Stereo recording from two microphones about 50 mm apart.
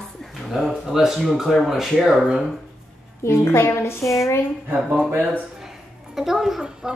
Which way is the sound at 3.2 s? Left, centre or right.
Left.